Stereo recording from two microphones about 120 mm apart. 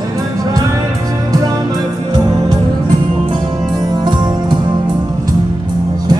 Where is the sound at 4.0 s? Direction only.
40° right (ahead or behind).